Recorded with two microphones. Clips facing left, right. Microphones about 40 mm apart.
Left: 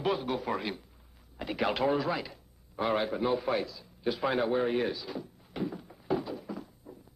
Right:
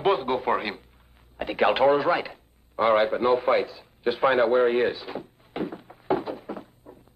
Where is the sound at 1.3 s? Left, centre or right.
Right.